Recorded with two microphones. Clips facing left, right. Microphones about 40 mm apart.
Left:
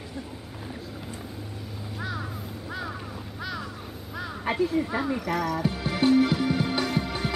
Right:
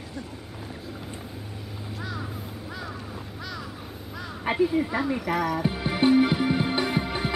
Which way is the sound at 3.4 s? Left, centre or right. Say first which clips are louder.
Left 4 dB; centre.